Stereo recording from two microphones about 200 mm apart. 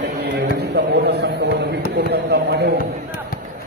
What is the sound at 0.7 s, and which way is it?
Music, 55° right (ahead or behind).